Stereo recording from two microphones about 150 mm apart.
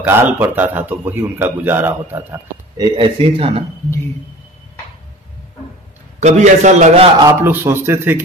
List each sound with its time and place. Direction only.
0.0 s a man's voice: 15° right (ahead or behind)
2.8 s speech: 35° right (ahead or behind)
6.1 s a man's voice: 50° right (ahead or behind)
7.2 s a man's voice: 15° right (ahead or behind)